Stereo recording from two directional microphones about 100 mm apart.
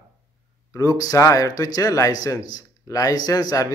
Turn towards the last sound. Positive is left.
turn(degrees=40)  # may be behind; listen again after turning